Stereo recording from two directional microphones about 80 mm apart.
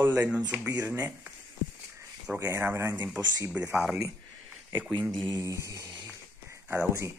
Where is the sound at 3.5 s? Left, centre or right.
Centre.